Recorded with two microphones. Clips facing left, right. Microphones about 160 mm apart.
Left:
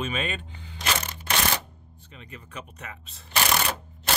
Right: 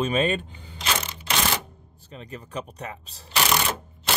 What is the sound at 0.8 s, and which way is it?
Crushing, 45° left (ahead or behind).